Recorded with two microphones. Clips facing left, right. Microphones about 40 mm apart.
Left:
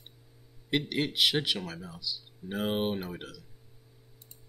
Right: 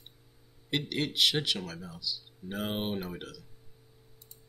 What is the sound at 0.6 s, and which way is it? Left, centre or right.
Speech, centre.